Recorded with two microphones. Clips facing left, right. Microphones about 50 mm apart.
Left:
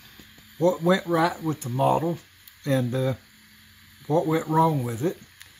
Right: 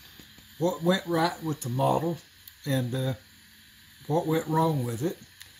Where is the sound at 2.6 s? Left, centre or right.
Left.